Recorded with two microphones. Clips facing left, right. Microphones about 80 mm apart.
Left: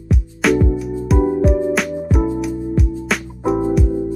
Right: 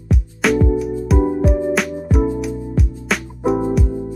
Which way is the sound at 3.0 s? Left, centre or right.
Centre.